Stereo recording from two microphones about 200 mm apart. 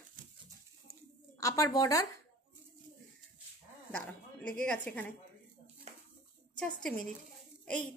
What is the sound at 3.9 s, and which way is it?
A woman's voice, 5° left (ahead or behind).